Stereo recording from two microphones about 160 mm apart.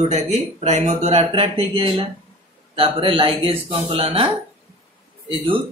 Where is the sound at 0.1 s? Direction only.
45° right (ahead or behind).